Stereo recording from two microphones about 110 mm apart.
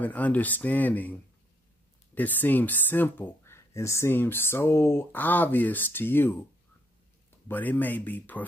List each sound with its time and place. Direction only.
0.0 s speech: 15° left (ahead or behind)
2.1 s speech: 15° left (ahead or behind)
7.4 s speech: 15° left (ahead or behind)